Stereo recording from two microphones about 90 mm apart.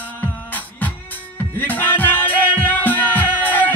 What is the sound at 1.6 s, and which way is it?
Music, 20° left (ahead or behind).